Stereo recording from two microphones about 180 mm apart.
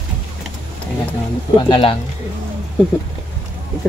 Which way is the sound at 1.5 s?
30° left (ahead or behind).